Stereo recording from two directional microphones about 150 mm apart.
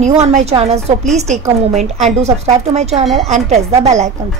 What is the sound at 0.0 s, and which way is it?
A woman's voice, 50° right (ahead or behind).